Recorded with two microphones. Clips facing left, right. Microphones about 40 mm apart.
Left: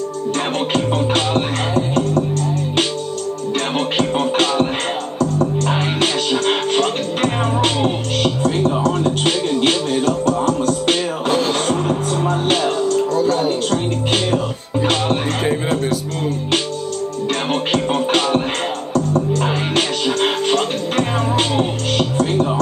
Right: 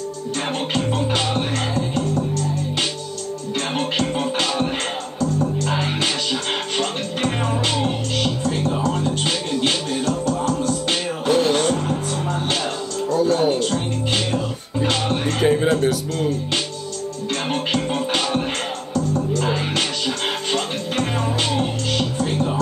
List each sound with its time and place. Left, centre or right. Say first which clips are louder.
0.7 s music: left 4 dB; left
2.0 s music: left 4 dB; left
3.7 s music: left 3 dB; left
11.7 s music: left 4 dB; left
12.3 s music: left 7 dB; left
15.4 s music: right 6 dB; centre
17.7 s music: left 7 dB; left